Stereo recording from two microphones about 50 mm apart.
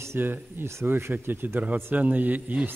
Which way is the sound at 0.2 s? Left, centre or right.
Right.